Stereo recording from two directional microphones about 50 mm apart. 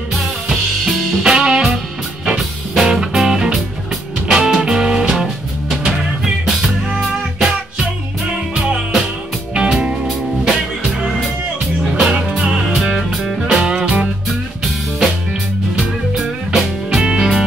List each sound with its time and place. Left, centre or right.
0.1 s music: centre
2.9 s music: centre
9.5 s music: centre
9.8 s music: centre
11.8 s music: centre
14.6 s music: centre
16.2 s music: centre